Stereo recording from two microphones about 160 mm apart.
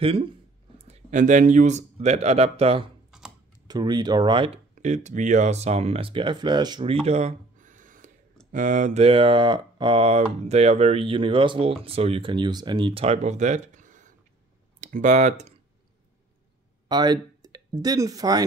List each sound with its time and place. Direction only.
0.0 s speech: 35° right (ahead or behind)
3.6 s speech: 25° right (ahead or behind)
4.8 s speech: 45° right (ahead or behind); by 6.9 s 25° right (ahead or behind)
6.9 s a sound: 40° right (ahead or behind)
8.5 s speech: 55° right (ahead or behind)
16.9 s speech: 25° right (ahead or behind)